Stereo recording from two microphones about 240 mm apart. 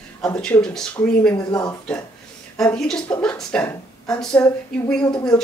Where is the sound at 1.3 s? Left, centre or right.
Centre.